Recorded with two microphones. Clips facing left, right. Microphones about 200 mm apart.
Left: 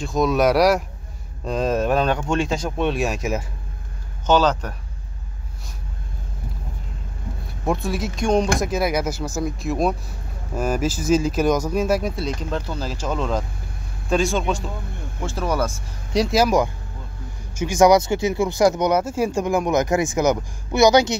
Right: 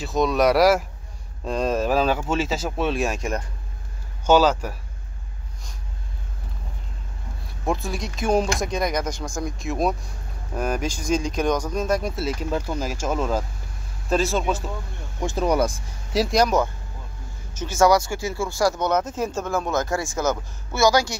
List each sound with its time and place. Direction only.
0.0 s speech: centre (ahead or behind)
4.3 s speech: 10° right (ahead or behind)
7.6 s speech: centre (ahead or behind)
12.2 s speech: 5° right (ahead or behind)
15.1 s speech: 15° right (ahead or behind)
16.1 s speech: centre (ahead or behind); by 21.2 s 20° left (ahead or behind)